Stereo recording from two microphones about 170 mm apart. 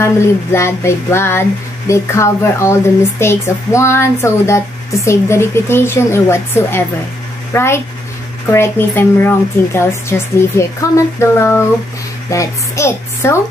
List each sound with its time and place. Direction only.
0.0 s speech: 15° left (ahead or behind)